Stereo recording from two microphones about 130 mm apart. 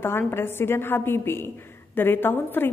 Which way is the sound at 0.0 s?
20° left (ahead or behind).